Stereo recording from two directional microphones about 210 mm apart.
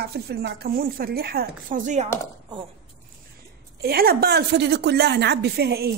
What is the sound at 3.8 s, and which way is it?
A woman's voice, 45° right (ahead or behind).